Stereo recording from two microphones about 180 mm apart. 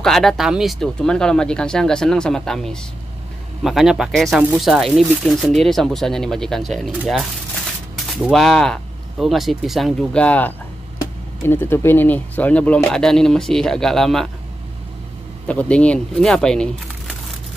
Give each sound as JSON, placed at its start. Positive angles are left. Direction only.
{"t": 0.0, "sound": "speech", "side_deg": 0}
{"t": 15.4, "sound": "speech", "side_deg": 5}